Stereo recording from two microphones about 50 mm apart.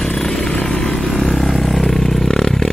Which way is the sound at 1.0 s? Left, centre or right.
Centre.